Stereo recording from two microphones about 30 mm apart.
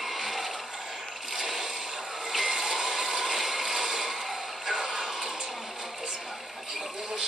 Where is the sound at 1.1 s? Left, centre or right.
Centre.